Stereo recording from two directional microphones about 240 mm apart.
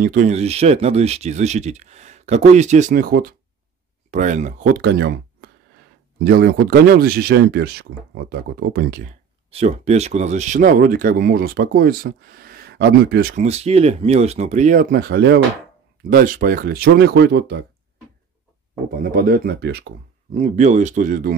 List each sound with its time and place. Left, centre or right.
0.0 s speech: right
9.5 s speech: right
13.4 s speech: right
19.1 s speech: right
20.3 s speech: right